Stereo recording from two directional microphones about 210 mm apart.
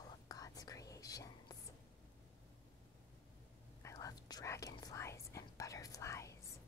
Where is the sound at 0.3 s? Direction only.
15° left (ahead or behind).